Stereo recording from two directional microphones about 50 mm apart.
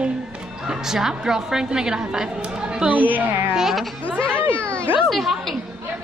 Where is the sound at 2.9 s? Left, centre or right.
Right.